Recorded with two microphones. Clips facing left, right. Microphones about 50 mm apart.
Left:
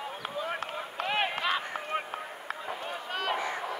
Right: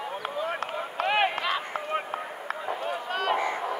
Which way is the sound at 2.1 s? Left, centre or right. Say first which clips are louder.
Right 4 dB; centre.